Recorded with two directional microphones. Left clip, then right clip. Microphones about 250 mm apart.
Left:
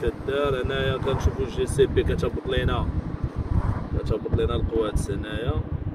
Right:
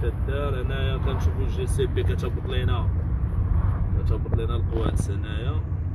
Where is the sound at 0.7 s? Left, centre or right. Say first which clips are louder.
Left 6 dB; right.